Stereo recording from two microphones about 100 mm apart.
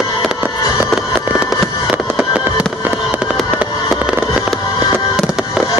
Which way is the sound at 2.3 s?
10° right (ahead or behind).